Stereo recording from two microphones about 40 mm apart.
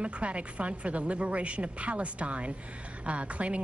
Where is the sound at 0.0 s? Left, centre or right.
Right.